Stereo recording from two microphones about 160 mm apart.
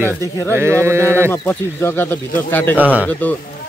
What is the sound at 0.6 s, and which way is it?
Speech, 15° right (ahead or behind).